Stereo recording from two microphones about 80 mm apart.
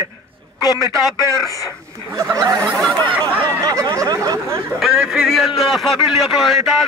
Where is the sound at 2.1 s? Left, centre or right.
Right.